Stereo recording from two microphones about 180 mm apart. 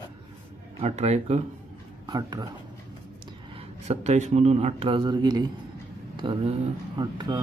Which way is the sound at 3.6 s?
40° right (ahead or behind).